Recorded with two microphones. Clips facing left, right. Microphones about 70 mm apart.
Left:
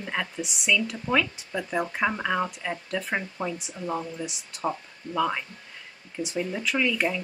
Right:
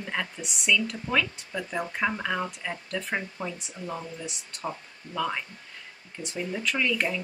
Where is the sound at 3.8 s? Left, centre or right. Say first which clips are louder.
Left 5 dB; centre.